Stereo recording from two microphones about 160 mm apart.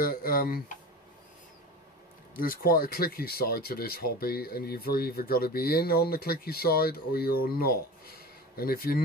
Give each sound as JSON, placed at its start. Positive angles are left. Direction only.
{"t": 0.0, "sound": "speech", "side_deg": 65}
{"t": 2.3, "sound": "speech", "side_deg": 60}